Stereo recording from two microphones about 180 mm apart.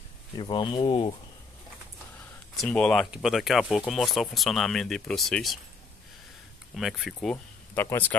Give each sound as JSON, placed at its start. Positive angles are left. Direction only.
{"t": 0.4, "sound": "speech", "side_deg": 25}
{"t": 2.5, "sound": "speech", "side_deg": 5}
{"t": 6.7, "sound": "speech", "side_deg": 0}
{"t": 7.7, "sound": "speech", "side_deg": 10}